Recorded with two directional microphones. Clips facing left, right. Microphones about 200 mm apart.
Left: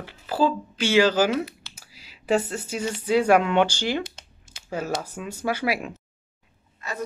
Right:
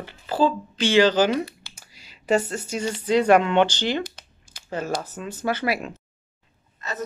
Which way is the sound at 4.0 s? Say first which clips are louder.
Right 2 dB; 25° left (ahead or behind).